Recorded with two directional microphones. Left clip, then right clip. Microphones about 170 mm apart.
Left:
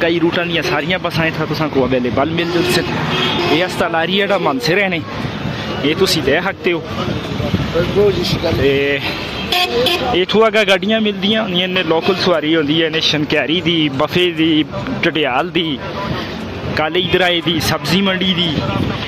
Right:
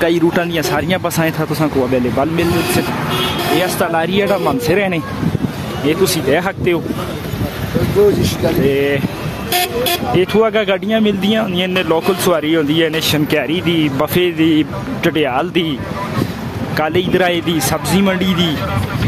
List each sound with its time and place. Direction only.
0.0 s speech: 35° right (ahead or behind)
1.8 s a man's voice: 10° right (ahead or behind)
4.0 s a man's voice: 10° right (ahead or behind)
8.6 s speech: 25° right (ahead or behind)
10.1 s speech: 10° right (ahead or behind)
13.4 s speech: 5° right (ahead or behind)
14.1 s a man's voice: 15° right (ahead or behind)
16.7 s speech: 25° right (ahead or behind)
17.6 s a man's voice: 15° right (ahead or behind)